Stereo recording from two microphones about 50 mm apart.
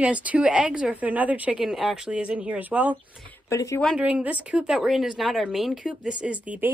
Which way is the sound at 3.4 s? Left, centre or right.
Left.